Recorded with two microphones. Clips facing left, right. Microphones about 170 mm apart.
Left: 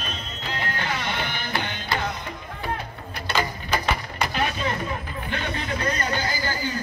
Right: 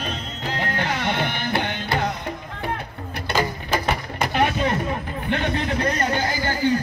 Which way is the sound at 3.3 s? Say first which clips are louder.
Right 3 dB; 45° right (ahead or behind).